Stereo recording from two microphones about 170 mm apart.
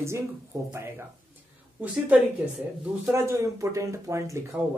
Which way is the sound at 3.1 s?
15° right (ahead or behind).